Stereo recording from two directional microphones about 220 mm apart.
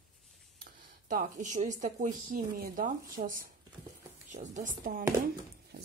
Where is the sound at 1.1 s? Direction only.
35° right (ahead or behind).